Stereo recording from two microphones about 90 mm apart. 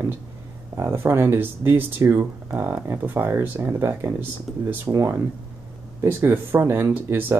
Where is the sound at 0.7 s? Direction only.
30° right (ahead or behind).